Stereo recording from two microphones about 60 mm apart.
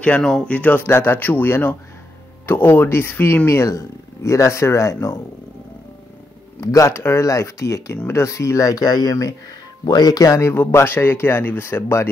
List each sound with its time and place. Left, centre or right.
0.2 s speech: centre
0.5 s speech: left
3.4 s speech: left
6.6 s speech: left
9.8 s speech: left
10.4 s speech: left